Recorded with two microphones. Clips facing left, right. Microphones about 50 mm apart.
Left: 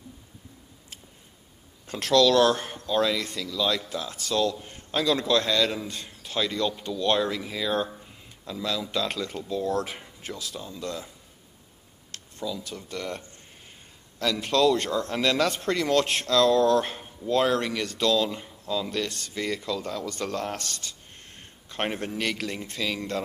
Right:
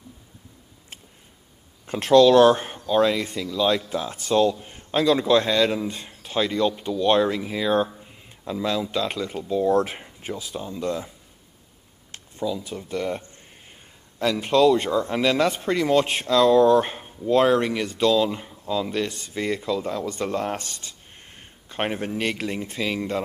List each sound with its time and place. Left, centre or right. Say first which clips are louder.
2.0 s speech: right 6 dB; right
4.6 s a man's voice: right 5 dB; centre
8.0 s a sound: right 4 dB; right
8.8 s speech: right 3 dB; centre; by 11.1 s right
12.1 s speech: right 6 dB; centre